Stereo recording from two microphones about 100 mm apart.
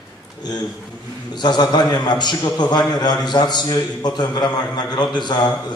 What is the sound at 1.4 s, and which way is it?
A man's voice, 45° left (ahead or behind).